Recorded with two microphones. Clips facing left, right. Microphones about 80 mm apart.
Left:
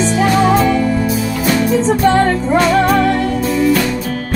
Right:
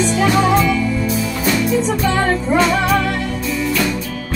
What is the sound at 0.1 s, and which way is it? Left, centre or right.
Music, left.